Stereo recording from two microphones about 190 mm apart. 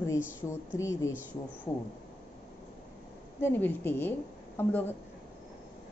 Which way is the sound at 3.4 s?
10° left (ahead or behind).